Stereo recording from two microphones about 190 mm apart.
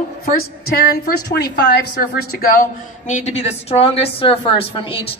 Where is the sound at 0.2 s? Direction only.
50° left (ahead or behind).